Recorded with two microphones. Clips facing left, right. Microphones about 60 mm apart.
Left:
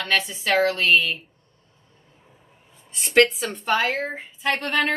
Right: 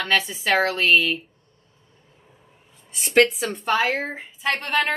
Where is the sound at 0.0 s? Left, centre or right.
Centre.